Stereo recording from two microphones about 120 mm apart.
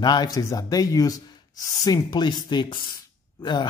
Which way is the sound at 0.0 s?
35° left (ahead or behind).